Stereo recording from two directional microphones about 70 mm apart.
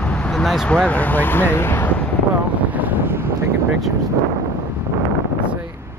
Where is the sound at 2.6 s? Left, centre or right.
Right.